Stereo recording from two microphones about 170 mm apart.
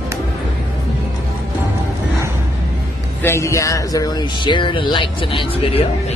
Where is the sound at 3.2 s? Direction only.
15° left (ahead or behind).